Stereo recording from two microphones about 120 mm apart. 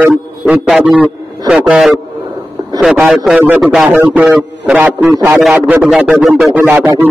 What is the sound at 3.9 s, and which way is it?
Speech, 15° right (ahead or behind).